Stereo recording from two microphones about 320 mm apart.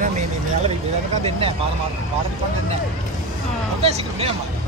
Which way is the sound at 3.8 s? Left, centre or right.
Centre.